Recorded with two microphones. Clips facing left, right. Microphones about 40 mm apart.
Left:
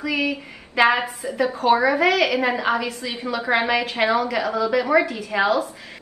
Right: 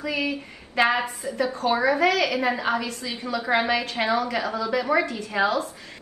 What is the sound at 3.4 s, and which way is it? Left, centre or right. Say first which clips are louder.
Speech: left 2 dB; left.